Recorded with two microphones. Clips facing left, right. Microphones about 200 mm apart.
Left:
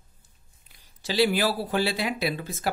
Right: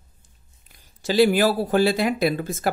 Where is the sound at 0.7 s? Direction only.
50° right (ahead or behind).